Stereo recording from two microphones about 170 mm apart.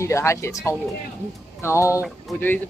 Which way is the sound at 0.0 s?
15° left (ahead or behind).